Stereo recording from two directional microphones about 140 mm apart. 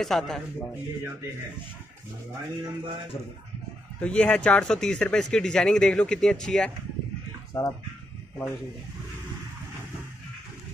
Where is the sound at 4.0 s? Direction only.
10° left (ahead or behind).